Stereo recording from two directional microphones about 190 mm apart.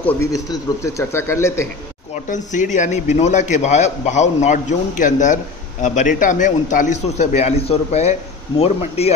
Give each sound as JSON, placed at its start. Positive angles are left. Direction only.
{"t": 0.0, "sound": "speech", "side_deg": 15}
{"t": 2.2, "sound": "a man's voice", "side_deg": 40}